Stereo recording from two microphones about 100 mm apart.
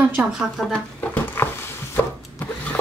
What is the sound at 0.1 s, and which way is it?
Speech, 5° right (ahead or behind).